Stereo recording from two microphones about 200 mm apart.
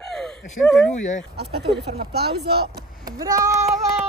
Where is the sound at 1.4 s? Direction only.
55° right (ahead or behind).